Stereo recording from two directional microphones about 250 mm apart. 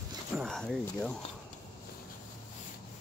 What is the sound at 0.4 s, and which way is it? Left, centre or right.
Speech, centre.